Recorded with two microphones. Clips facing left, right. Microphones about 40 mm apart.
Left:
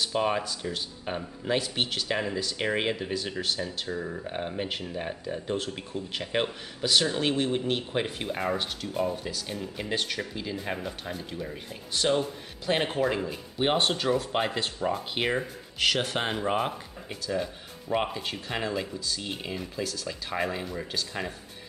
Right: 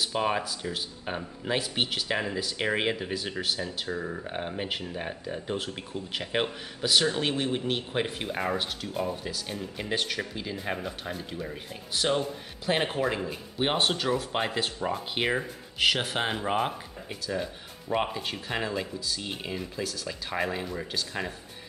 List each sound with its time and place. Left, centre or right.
0.0 s speech: centre